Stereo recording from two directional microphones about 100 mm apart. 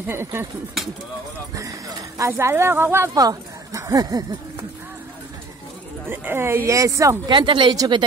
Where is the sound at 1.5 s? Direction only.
35° right (ahead or behind).